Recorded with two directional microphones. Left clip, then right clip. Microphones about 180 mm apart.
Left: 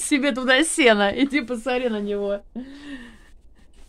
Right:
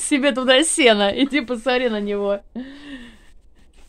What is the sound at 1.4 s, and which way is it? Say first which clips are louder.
Speech: right 4 dB; 20° right (ahead or behind).